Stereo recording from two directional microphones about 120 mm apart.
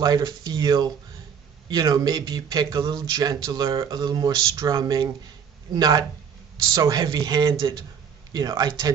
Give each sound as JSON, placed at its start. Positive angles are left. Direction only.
{"t": 0.0, "sound": "speech", "side_deg": -35}